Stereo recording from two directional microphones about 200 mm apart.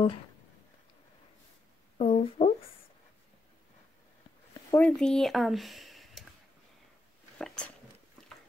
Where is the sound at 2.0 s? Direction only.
35° left (ahead or behind).